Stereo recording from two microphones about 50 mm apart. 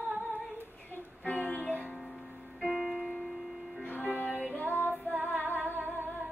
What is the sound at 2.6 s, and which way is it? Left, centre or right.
Music, centre.